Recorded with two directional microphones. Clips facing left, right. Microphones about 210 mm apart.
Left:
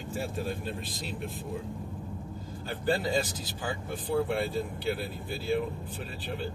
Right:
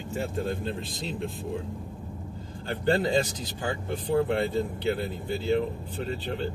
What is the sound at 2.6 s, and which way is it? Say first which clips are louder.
Speech: right 4 dB; 25° right (ahead or behind).